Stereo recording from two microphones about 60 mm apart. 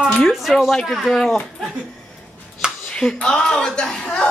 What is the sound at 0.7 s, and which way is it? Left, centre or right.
Speech, centre.